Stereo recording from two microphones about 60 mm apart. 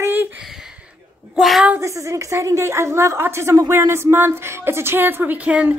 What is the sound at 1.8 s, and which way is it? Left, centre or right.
A woman's voice, right.